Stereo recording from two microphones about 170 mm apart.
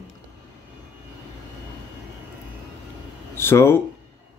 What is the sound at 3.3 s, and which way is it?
Speech, 15° left (ahead or behind).